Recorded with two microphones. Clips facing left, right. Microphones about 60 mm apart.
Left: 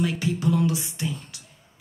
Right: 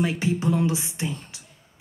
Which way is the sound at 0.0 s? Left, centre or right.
Right.